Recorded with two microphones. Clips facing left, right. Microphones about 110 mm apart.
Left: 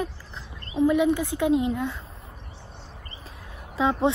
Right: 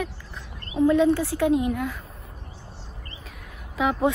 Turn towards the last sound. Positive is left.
turn(degrees=30)  # may be behind; listen again after turning